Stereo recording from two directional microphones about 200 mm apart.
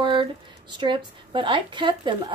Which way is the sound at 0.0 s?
25° right (ahead or behind).